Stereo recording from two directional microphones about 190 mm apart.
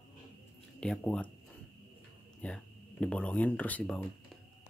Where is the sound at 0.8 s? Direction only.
5° left (ahead or behind).